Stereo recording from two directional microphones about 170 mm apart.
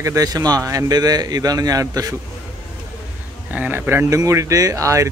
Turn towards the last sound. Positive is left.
turn(degrees=-20)  # may be behind; listen again after turning